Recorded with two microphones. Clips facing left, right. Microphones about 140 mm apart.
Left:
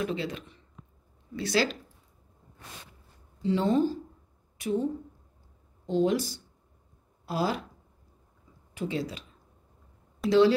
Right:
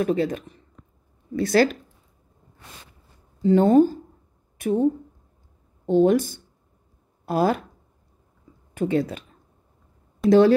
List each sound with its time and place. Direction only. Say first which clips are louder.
0.0 s speech: right 9 dB; 45° right (ahead or behind)
0.8 s a sound: right 1 dB; 5° left (ahead or behind)
1.3 s speech: right 8 dB; 50° right (ahead or behind)
3.4 s a woman's voice: right 9 dB; 50° right (ahead or behind)
5.9 s speech: right 8 dB; 50° right (ahead or behind)
8.7 s speech: right 9 dB; 55° right (ahead or behind)
10.2 s speech: right 8 dB; centre (ahead or behind)